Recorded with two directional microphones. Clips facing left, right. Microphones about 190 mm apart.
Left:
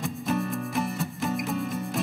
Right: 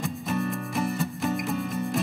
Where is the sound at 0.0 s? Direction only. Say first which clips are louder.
Even; centre (ahead or behind).